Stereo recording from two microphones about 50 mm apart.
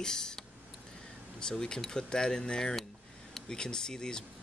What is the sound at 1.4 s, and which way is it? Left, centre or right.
Speech, centre.